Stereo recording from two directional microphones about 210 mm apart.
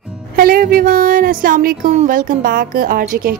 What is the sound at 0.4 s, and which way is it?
Speech, 45° right (ahead or behind).